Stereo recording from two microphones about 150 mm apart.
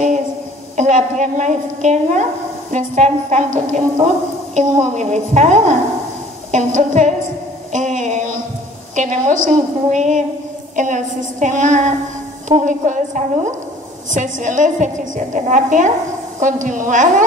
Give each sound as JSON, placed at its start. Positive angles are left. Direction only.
{"t": 0.7, "sound": "a woman's voice", "side_deg": -55}
{"t": 7.7, "sound": "a sound", "side_deg": -60}
{"t": 8.9, "sound": "a woman's voice", "side_deg": -55}